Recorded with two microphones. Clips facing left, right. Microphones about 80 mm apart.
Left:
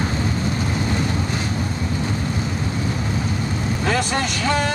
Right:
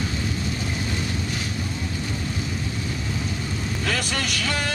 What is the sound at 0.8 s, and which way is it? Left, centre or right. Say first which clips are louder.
Vehicle: left 6 dB; left.